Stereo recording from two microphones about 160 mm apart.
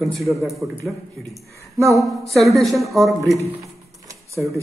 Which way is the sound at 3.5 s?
20° right (ahead or behind).